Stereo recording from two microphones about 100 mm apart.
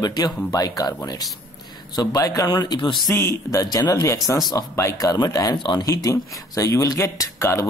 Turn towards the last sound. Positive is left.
turn(degrees=30)  # may be behind; listen again after turning